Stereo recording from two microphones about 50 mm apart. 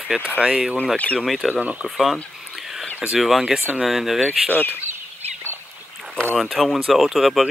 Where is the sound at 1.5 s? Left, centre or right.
Right.